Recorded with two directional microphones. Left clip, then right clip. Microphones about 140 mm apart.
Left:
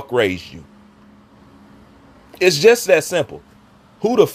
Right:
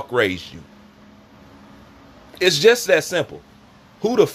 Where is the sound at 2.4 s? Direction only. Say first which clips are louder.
Left 2 dB; 30° left (ahead or behind).